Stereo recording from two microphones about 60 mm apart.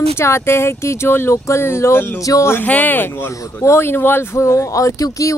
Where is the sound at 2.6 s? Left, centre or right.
Left.